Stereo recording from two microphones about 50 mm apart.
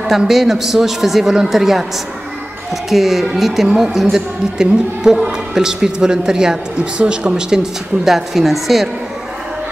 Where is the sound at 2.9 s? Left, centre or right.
Centre.